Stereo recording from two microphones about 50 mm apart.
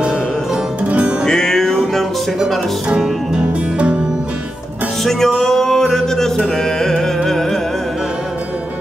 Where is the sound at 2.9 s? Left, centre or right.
Centre.